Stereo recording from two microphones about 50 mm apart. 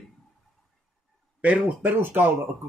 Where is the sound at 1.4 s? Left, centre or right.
Right.